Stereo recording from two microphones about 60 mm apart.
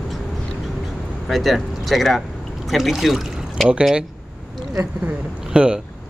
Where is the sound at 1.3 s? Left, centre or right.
Centre.